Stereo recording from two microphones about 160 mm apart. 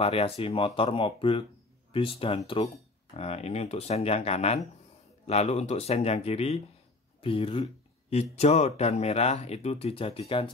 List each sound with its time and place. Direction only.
0.0 s speech: 35° left (ahead or behind)